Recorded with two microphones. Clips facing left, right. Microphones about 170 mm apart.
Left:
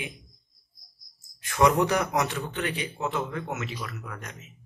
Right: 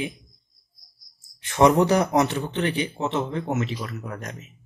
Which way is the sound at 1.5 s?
30° right (ahead or behind).